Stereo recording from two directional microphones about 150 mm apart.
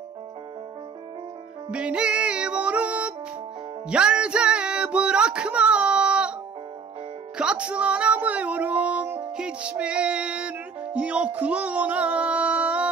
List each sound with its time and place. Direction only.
1.7 s music: 5° right (ahead or behind)
7.3 s music: 5° right (ahead or behind)